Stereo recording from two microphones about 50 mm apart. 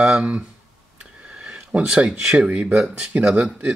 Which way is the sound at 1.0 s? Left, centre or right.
Right.